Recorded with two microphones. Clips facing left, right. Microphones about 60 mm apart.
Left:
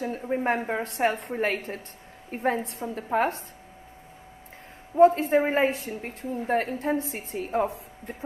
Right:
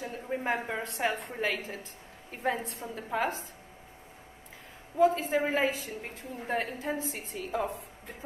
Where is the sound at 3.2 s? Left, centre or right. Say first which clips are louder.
Left 6 dB; left.